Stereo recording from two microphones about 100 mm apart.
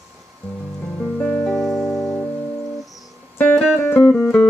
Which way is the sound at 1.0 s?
10° left (ahead or behind).